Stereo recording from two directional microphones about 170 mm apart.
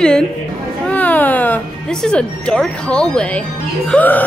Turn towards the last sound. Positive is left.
turn(degrees=10)  # may be behind; listen again after turning